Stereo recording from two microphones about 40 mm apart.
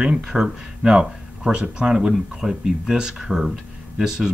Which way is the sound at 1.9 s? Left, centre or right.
Centre.